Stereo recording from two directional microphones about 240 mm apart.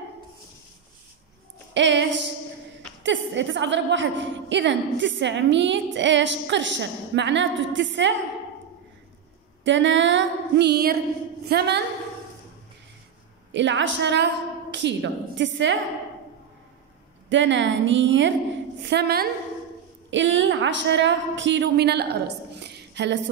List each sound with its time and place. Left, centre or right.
1.7 s a woman's voice: right
9.7 s a woman's voice: right
13.5 s a woman's voice: right
17.3 s a woman's voice: right